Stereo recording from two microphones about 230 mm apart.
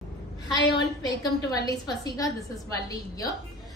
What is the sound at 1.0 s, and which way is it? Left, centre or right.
A woman's voice, centre.